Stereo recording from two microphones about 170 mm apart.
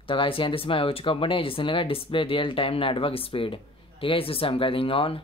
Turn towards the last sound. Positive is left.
turn(degrees=35)  # may be behind; listen again after turning